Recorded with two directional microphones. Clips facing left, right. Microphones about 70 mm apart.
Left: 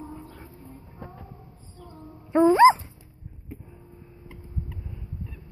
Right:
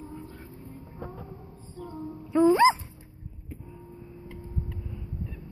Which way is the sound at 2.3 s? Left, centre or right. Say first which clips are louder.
Left 4 dB; left.